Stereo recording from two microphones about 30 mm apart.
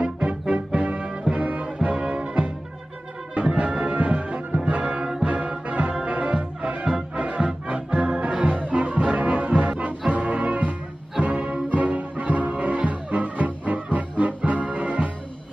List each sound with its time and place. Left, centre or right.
0.0 s music: right
1.8 s music: right
8.5 s music: right